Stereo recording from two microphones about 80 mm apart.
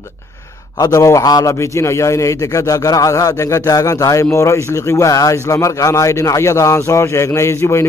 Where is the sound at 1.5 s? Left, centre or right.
Left.